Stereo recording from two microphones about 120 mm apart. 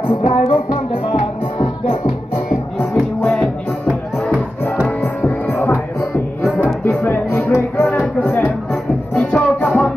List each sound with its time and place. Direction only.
0.2 s music: 70° left (ahead or behind)
0.5 s music: 45° left (ahead or behind)
2.8 s music: 15° left (ahead or behind)
3.8 s music: 10° right (ahead or behind)
4.8 s music: 10° left (ahead or behind)